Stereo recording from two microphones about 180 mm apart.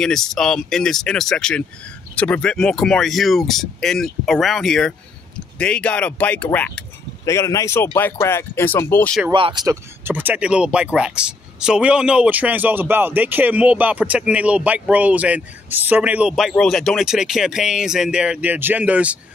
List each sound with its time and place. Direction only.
0.0 s speech: 5° left (ahead or behind)
9.3 s speech: 25° right (ahead or behind)
10.0 s speech: 10° right (ahead or behind)